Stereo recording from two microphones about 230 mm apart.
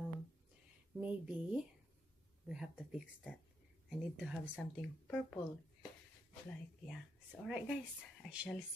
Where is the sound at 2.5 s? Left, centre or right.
Centre.